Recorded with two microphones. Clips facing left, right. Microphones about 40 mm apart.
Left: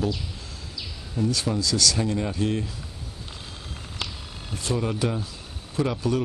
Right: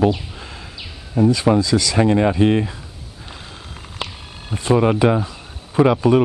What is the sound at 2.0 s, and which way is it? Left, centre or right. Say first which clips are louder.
Speech: right 11 dB; right.